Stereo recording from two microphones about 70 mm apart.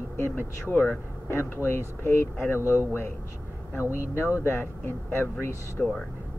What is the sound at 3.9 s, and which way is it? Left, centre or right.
Speech, left.